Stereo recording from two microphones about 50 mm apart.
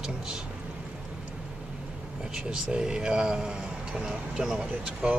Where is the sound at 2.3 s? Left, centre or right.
Centre.